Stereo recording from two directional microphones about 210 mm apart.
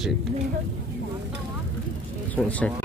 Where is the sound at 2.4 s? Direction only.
5° left (ahead or behind).